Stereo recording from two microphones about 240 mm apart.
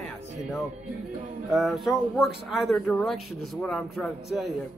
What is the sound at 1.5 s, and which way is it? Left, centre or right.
Speech, centre.